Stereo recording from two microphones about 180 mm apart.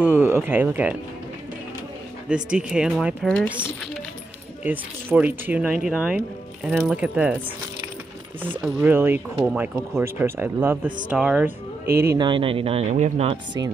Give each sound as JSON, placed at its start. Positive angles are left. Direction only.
{"t": 0.0, "sound": "speech", "side_deg": -10}
{"t": 2.2, "sound": "speech", "side_deg": -5}
{"t": 4.6, "sound": "speech", "side_deg": -10}
{"t": 12.2, "sound": "speech", "side_deg": -30}